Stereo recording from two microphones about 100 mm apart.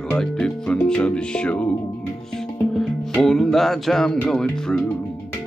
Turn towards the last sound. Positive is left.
turn(degrees=5)  # may be behind; listen again after turning